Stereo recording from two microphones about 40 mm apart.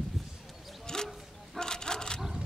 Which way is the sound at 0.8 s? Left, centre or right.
Centre.